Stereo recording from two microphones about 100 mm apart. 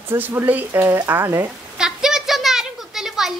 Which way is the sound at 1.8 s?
5° right (ahead or behind).